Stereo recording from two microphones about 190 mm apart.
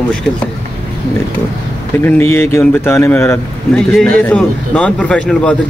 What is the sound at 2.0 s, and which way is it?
A man's voice, 10° left (ahead or behind).